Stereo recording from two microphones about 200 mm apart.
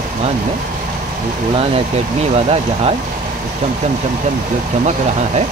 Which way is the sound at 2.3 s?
30° right (ahead or behind).